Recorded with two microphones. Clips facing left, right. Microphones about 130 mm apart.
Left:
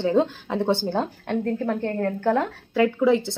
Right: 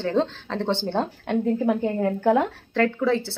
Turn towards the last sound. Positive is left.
turn(degrees=15)  # may be behind; listen again after turning